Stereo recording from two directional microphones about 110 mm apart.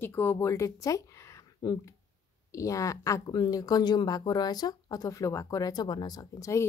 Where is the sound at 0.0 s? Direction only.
20° left (ahead or behind).